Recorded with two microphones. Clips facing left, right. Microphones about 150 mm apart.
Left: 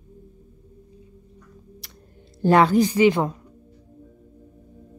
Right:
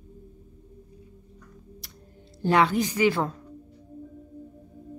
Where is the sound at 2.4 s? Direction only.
40° left (ahead or behind); by 3.4 s 20° left (ahead or behind).